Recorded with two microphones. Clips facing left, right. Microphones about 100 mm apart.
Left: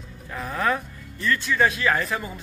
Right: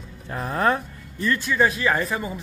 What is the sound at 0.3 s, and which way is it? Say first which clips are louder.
Speech: right 3 dB; 35° right (ahead or behind).